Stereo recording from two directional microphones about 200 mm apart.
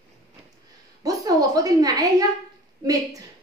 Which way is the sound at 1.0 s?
20° right (ahead or behind).